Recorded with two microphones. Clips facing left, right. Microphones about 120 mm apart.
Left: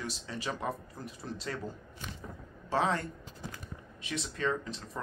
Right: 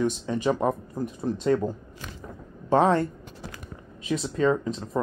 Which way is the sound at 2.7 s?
55° right (ahead or behind).